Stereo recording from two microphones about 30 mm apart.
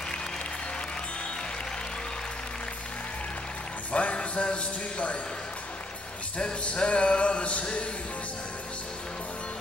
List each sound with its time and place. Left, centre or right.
3.9 s a man's voice: left
6.6 s music: left